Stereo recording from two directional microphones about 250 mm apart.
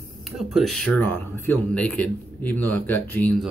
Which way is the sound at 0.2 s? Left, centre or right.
Centre.